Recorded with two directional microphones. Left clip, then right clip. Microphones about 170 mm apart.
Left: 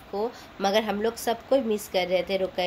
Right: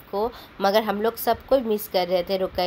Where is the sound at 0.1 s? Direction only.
15° right (ahead or behind).